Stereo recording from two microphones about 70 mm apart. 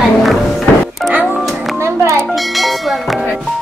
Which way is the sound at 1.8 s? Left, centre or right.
Right.